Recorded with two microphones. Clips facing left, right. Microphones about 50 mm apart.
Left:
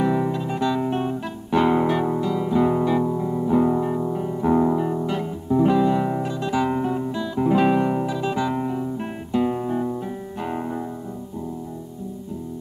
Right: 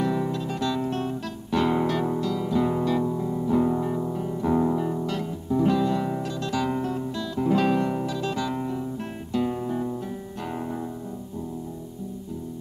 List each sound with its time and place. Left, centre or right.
0.0 s guitar: centre
10.4 s music: centre